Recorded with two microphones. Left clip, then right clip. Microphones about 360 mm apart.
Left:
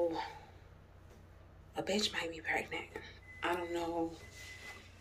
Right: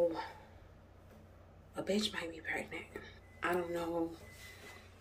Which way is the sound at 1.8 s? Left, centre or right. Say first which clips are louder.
Left 1 dB; centre.